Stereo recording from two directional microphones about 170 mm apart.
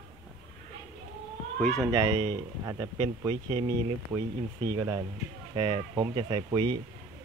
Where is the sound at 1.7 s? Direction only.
20° right (ahead or behind).